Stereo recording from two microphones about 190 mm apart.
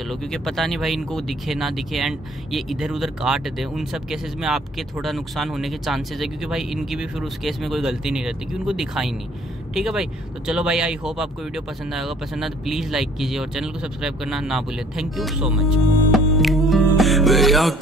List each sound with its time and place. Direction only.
0.1 s speech: centre (ahead or behind)
16.1 s music: centre (ahead or behind)